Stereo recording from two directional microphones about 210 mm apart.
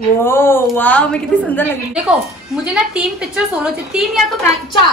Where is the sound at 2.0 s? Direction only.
5° right (ahead or behind).